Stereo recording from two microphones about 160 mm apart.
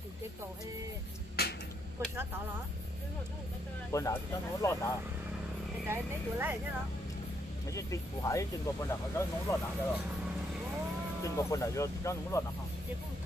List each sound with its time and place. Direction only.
1.4 s a sound: 80° left
3.9 s speech: 20° left (ahead or behind)
5.9 s speech: 15° right (ahead or behind)
7.7 s speech: 20° left (ahead or behind)
11.2 s speech: 20° left (ahead or behind)